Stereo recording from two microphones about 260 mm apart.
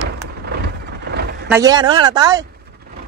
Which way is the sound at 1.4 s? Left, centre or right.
Centre.